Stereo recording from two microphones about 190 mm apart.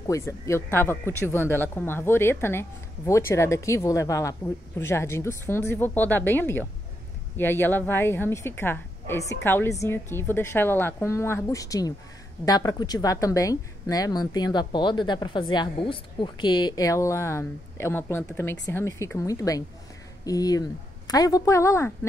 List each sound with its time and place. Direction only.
0.0 s a woman's voice: 15° left (ahead or behind)